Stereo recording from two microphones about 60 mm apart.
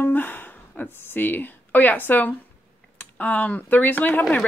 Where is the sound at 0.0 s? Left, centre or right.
Left.